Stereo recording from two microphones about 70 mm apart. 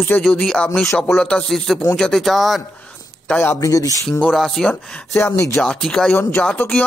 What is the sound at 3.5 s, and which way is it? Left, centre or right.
Speech, left.